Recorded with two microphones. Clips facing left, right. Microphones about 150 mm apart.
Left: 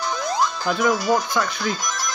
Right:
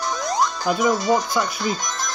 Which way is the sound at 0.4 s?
15° right (ahead or behind).